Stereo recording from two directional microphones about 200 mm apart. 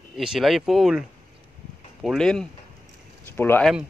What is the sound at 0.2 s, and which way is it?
Speech, centre (ahead or behind).